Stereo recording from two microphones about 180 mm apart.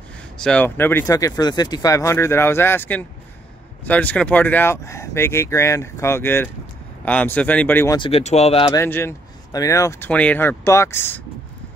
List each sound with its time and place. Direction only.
0.4 s speech: 5° left (ahead or behind)
8.0 s speech: 35° left (ahead or behind)
8.7 s speech: 10° left (ahead or behind)